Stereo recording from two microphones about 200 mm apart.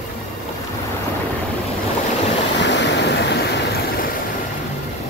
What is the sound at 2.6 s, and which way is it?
Waves, 60° left (ahead or behind).